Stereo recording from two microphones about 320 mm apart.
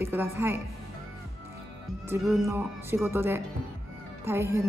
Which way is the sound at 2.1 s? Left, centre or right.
Centre.